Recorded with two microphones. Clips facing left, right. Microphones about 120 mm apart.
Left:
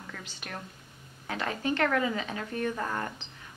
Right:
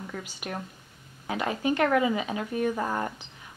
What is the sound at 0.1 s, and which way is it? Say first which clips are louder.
A woman's voice: right 4 dB; 10° right (ahead or behind).